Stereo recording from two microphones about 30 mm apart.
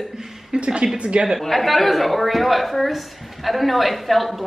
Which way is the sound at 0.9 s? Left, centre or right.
Right.